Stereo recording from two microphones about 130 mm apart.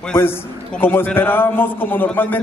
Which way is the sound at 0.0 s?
15° left (ahead or behind).